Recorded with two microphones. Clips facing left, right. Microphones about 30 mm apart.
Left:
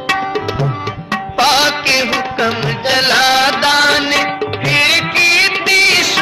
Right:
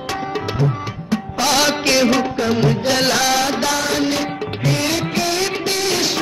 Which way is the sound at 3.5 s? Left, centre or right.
Left.